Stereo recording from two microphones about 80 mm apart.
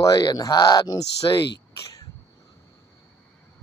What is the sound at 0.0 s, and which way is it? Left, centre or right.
Speech, left.